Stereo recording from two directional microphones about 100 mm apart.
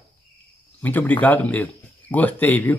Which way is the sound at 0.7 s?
20° left (ahead or behind).